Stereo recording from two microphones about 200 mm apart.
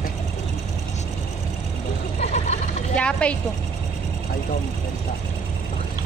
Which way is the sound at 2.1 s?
35° left (ahead or behind).